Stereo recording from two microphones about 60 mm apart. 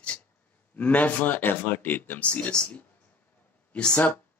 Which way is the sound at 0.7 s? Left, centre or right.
Left.